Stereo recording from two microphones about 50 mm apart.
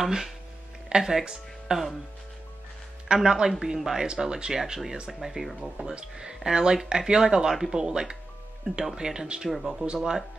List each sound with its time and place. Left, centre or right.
0.0 s speech: centre
3.2 s speech: centre
5.8 s speech: centre